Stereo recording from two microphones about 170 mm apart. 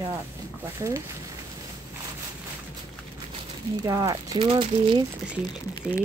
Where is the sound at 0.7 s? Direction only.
20° right (ahead or behind).